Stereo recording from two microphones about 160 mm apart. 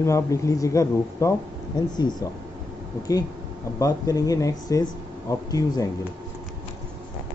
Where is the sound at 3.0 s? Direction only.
20° left (ahead or behind).